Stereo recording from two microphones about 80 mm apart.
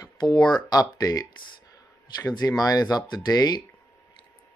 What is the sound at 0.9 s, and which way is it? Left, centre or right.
Speech, left.